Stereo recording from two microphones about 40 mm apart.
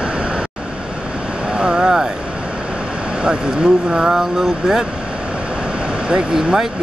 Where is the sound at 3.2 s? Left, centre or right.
Centre.